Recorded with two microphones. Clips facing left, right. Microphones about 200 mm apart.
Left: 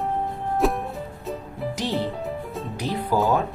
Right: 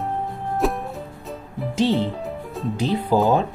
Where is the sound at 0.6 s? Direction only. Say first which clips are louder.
Even; centre (ahead or behind).